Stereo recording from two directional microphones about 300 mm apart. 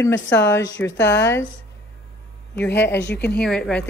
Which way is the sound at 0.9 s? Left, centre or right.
Left.